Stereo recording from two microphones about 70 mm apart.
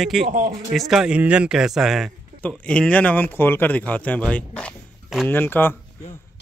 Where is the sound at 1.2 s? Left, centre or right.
Centre.